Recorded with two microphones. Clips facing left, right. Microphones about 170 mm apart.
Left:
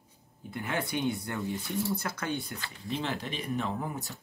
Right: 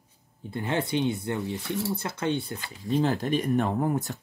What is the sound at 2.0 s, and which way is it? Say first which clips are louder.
Speech: right 5 dB; 25° right (ahead or behind).